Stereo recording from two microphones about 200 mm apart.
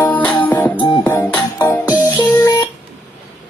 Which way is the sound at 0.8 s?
20° left (ahead or behind).